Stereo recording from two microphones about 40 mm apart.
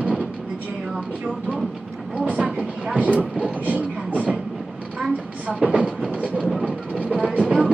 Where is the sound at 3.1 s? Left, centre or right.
Right.